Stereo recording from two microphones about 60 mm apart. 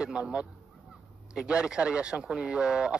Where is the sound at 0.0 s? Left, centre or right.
Centre.